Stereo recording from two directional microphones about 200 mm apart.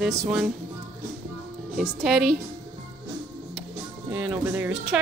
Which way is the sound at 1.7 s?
Centre (ahead or behind).